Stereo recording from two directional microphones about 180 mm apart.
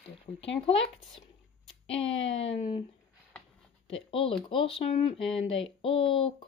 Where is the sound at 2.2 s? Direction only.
35° left (ahead or behind).